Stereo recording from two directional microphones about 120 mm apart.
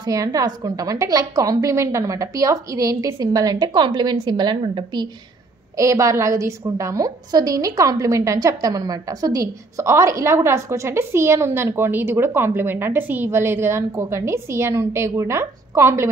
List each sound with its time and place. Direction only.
0.0 s a woman's voice: 30° right (ahead or behind)
5.8 s a woman's voice: 25° right (ahead or behind)